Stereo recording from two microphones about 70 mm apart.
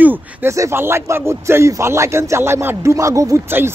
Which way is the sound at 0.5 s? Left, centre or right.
Right.